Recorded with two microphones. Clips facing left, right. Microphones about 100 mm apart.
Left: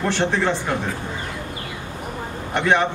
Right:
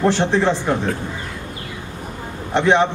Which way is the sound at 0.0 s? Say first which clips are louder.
Right 4 dB; 20° right (ahead or behind).